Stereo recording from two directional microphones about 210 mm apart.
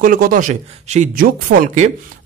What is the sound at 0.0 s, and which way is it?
Speech, 40° right (ahead or behind).